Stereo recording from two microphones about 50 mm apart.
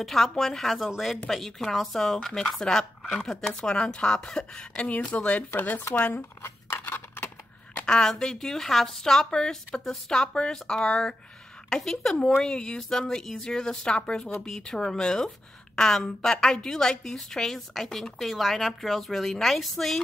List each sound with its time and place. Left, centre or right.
0.0 s a woman's voice: centre
5.1 s speech: left
6.8 s scissors: left
7.8 s a woman's voice: centre